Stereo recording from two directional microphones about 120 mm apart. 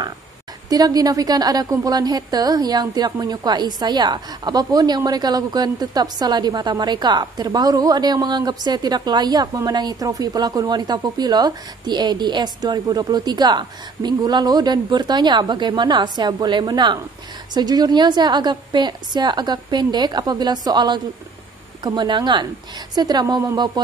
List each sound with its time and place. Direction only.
0.7 s a woman's voice: 30° right (ahead or behind)